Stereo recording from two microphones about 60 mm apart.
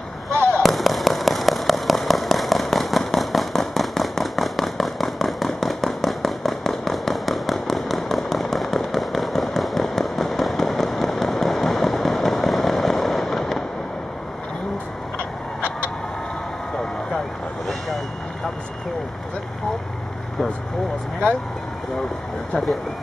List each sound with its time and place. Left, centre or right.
0.5 s a sound: centre
15.1 s vehicle: left
22.5 s vehicle: centre